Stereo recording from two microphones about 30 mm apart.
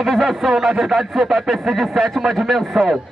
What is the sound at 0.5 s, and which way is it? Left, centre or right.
Speech, centre.